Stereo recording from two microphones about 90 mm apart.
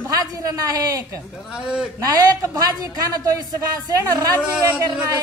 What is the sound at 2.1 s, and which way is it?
A woman's voice, 45° right (ahead or behind).